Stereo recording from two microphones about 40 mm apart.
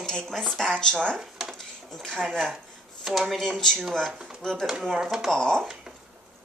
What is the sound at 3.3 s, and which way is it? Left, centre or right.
Speech, centre.